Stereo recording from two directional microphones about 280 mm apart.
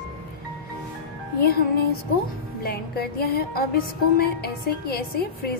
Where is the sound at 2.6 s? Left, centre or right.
Left.